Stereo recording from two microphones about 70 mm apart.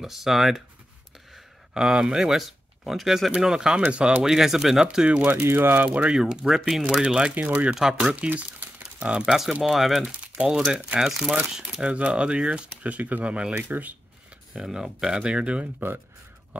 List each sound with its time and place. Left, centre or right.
0.0 s speech: centre
5.4 s speech: right
5.9 s speech: centre
7.3 s speech: right
7.7 s speech: centre
8.3 s crumpling: right
9.0 s speech: centre
10.1 s speech: centre
14.5 s speech: centre
15.6 s speech: right